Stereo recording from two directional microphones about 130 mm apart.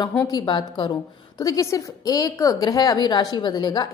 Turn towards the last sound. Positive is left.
turn(degrees=35)  # may be behind; listen again after turning